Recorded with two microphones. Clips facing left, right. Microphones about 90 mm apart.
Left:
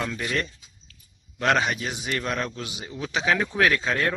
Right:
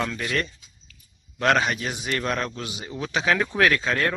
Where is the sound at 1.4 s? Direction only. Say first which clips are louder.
Right 1 dB; 10° left (ahead or behind).